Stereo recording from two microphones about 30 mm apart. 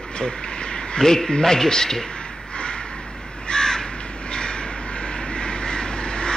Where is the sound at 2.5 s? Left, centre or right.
Left.